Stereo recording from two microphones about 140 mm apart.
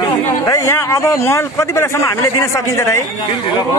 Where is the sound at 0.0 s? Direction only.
25° left (ahead or behind).